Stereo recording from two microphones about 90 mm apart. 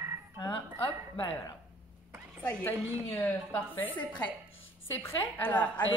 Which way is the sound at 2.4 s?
20° left (ahead or behind).